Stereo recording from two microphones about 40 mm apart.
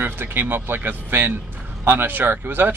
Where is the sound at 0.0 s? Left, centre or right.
Right.